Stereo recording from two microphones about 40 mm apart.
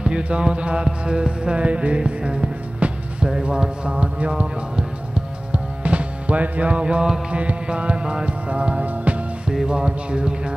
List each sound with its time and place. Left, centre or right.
0.0 s music: right
9.8 s music: right